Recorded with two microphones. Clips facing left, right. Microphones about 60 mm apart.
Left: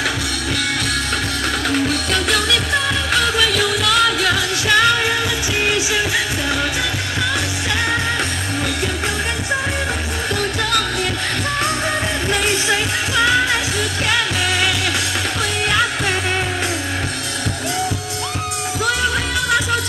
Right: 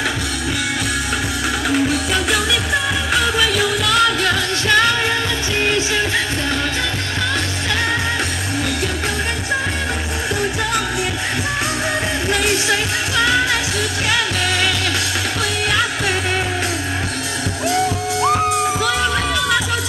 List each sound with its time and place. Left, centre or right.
1.7 s music: centre
13.1 s music: centre
18.2 s music: right